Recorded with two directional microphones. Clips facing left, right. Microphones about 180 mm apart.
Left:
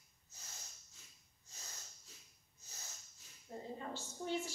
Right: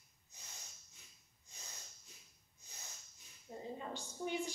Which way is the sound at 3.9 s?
15° right (ahead or behind).